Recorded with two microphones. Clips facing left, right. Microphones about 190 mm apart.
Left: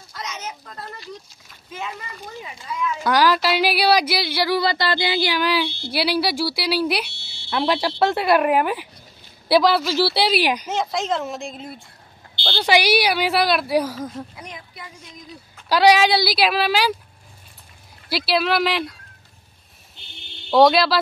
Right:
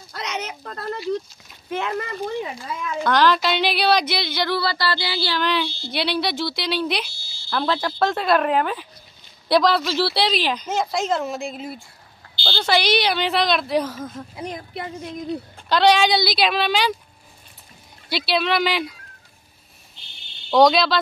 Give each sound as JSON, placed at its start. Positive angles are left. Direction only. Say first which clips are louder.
{"t": 0.1, "sound": "a sound", "louder": "right 3 dB", "side_deg": -65}
{"t": 1.7, "sound": "speech", "louder": "right 7 dB", "side_deg": -65}
{"t": 3.0, "sound": "speech", "louder": "even", "side_deg": 10}
{"t": 7.1, "sound": "a sound", "louder": "left 2 dB", "side_deg": 70}
{"t": 7.5, "sound": "speech", "louder": "left 2 dB", "side_deg": 10}
{"t": 10.7, "sound": "speech", "louder": "right 1 dB", "side_deg": -5}
{"t": 12.5, "sound": "speech", "louder": "left 2 dB", "side_deg": 10}
{"t": 14.3, "sound": "speech", "louder": "right 7 dB", "side_deg": -30}
{"t": 14.7, "sound": "speech", "louder": "right 11 dB", "side_deg": -60}
{"t": 15.7, "sound": "speech", "louder": "left 1 dB", "side_deg": 5}
{"t": 18.1, "sound": "speech", "louder": "left 1 dB", "side_deg": 5}
{"t": 20.5, "sound": "speech", "louder": "left 1 dB", "side_deg": 5}